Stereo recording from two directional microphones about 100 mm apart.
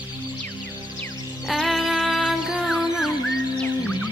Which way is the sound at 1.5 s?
Centre (ahead or behind).